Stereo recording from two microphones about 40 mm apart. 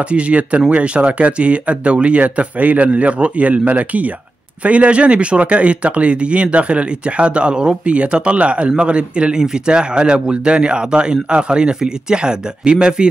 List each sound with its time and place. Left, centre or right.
0.1 s speech: right